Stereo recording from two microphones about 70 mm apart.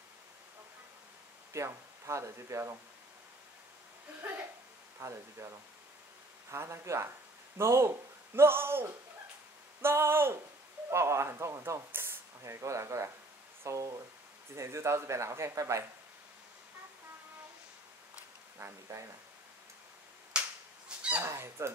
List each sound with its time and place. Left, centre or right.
1.5 s speech: right
4.9 s speech: right
8.4 s a sound: right
10.9 s speech: right
18.6 s speech: right
20.3 s finger snapping: centre
21.2 s a sound: right